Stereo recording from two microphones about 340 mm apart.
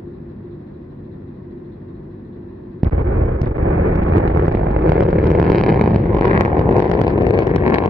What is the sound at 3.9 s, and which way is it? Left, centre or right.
Vehicle, right.